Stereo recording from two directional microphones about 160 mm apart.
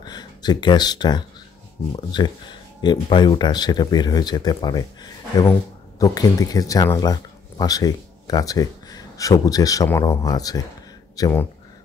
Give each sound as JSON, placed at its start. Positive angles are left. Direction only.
{"t": 0.0, "sound": "speech", "side_deg": 25}